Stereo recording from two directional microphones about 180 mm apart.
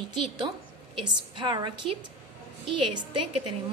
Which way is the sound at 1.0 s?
25° right (ahead or behind).